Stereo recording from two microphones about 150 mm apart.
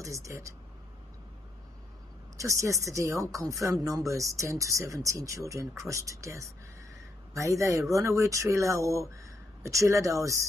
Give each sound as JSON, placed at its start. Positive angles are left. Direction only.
{"t": 0.0, "sound": "speech", "side_deg": -20}
{"t": 2.3, "sound": "speech", "side_deg": -20}